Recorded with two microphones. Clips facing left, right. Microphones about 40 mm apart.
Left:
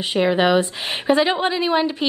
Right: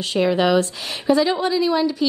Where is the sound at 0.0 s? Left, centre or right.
Left.